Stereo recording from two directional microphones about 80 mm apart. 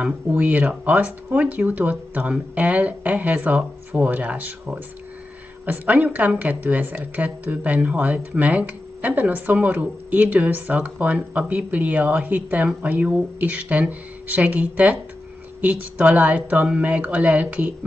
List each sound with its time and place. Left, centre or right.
0.3 s a woman's voice: centre